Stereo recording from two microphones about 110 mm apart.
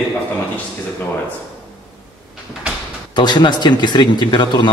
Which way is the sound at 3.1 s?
45° left (ahead or behind).